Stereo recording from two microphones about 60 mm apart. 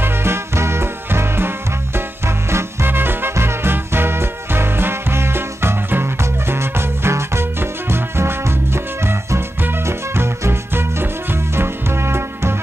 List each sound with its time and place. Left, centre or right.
0.0 s swing music: right